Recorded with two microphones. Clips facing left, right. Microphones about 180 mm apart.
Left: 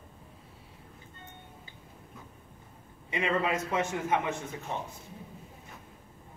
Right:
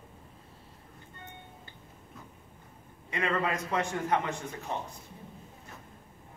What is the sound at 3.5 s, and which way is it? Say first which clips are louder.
Speech: left 1 dB; 5° left (ahead or behind).